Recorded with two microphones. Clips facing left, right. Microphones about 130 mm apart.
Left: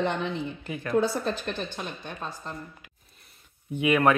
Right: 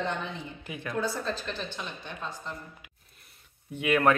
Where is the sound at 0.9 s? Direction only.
65° left (ahead or behind).